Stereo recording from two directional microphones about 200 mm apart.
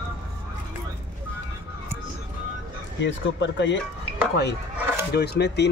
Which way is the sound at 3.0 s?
65° left (ahead or behind).